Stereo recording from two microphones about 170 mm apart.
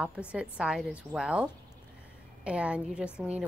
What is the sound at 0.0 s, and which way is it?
A woman's voice, 5° right (ahead or behind).